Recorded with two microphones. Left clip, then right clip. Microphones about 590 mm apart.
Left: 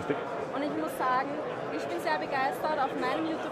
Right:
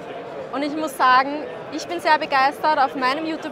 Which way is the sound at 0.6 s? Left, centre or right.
Right.